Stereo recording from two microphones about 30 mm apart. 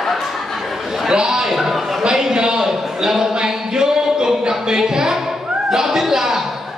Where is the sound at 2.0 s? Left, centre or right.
Right.